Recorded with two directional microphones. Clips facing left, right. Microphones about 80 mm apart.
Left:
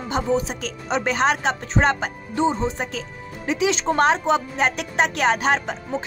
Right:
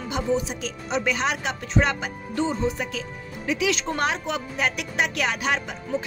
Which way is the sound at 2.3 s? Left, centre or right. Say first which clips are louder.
Left 3 dB; left.